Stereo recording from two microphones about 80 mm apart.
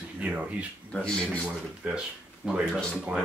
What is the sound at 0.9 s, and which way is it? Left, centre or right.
Speech, centre.